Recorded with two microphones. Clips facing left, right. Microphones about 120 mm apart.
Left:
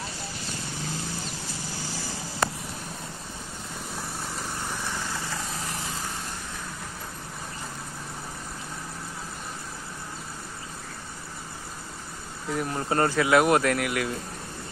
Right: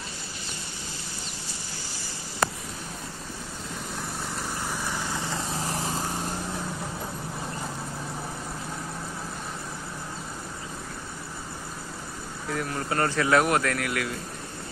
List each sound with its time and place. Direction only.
4.8 s vehicle: 15° right (ahead or behind)
5.5 s vehicle: 35° right (ahead or behind)
12.4 s speech: 20° left (ahead or behind)